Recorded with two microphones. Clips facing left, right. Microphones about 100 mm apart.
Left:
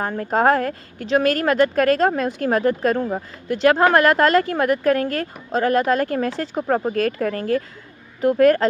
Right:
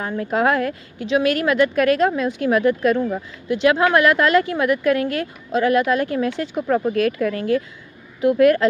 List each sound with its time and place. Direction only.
0.0 s a woman's voice: 45° left (ahead or behind)